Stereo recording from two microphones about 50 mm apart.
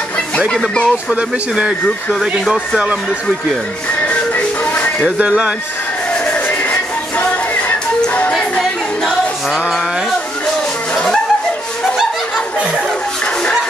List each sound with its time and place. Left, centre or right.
0.5 s speech: centre
2.0 s speech: centre
4.1 s music: left
8.1 s music: left